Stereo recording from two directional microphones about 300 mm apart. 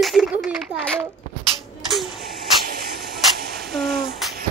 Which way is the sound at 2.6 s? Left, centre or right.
Right.